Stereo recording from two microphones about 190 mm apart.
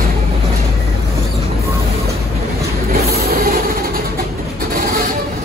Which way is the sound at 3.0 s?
50° right (ahead or behind).